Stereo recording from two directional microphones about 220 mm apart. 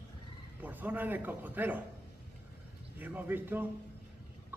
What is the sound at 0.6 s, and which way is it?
A man's voice, 10° right (ahead or behind).